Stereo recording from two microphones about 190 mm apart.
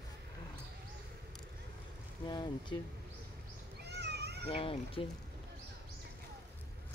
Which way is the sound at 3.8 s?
60° right (ahead or behind).